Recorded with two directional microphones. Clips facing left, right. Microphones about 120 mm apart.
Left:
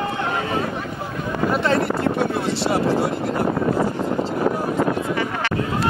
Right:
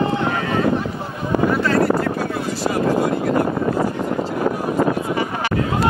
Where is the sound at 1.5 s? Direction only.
25° left (ahead or behind).